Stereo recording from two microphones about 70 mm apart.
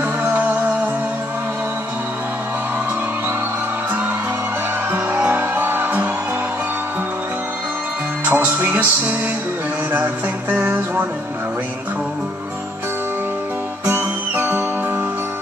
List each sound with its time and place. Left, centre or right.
0.3 s music: right
4.9 s music: right
8.3 s music: right
13.8 s music: right